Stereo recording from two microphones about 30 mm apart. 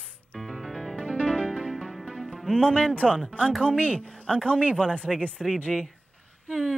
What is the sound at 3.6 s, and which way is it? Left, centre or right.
Speech, left.